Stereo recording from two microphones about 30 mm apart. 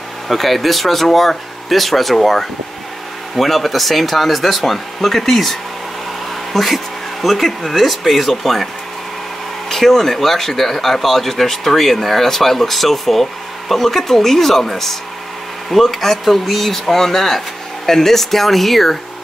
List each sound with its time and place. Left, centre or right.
0.3 s speech: centre
9.7 s speech: centre